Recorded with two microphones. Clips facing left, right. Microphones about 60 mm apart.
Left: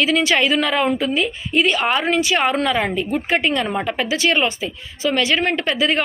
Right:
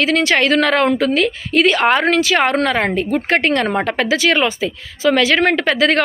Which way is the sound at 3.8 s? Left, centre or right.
Right.